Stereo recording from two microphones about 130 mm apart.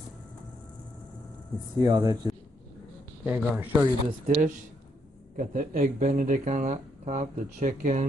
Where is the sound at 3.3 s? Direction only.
15° right (ahead or behind).